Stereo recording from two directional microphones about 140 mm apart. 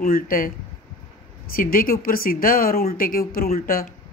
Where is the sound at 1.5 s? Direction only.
90° left.